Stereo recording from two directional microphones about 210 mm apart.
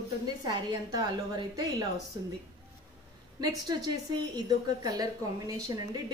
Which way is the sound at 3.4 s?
20° right (ahead or behind).